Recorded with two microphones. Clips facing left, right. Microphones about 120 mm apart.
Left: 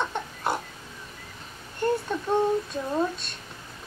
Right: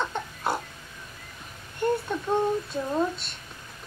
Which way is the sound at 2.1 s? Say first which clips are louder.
Left 1 dB; 15° right (ahead or behind).